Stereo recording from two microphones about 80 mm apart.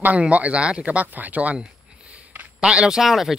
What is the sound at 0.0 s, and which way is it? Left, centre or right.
Speech, centre.